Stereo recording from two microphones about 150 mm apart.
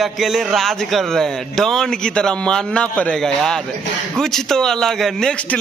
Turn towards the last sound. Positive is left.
turn(degrees=5)  # may be behind; listen again after turning